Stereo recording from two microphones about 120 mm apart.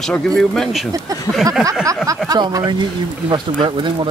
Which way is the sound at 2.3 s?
35° right (ahead or behind).